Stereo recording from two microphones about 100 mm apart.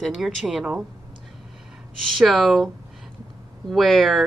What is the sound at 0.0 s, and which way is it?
Speech, centre (ahead or behind).